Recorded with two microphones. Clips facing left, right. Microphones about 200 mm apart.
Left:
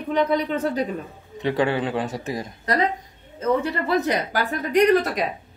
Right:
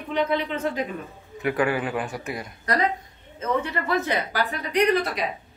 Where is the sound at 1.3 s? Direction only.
25° left (ahead or behind).